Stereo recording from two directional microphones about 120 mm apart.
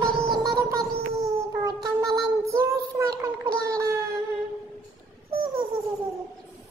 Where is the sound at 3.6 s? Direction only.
25° right (ahead or behind).